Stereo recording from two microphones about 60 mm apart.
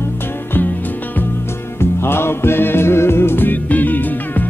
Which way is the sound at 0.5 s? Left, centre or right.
Left.